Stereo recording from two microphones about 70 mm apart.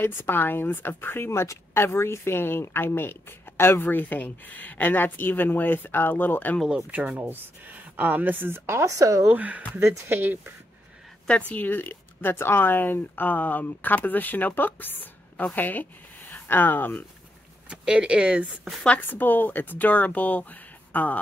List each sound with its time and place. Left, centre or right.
0.0 s speech: left
6.7 s speech: right
8.9 s speech: right
9.3 s speech: right
9.8 s speech: right
11.2 s speech: centre
11.5 s speech: left
17.6 s speech: centre
18.9 s speech: left